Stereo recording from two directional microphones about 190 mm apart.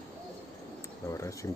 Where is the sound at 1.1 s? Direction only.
15° left (ahead or behind).